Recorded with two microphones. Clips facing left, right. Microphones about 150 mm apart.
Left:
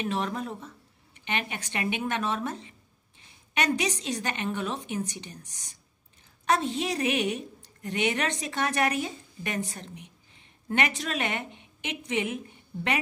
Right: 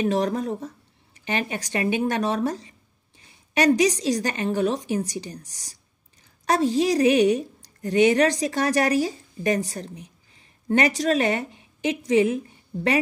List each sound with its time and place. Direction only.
0.0 s a woman's voice: 40° right (ahead or behind)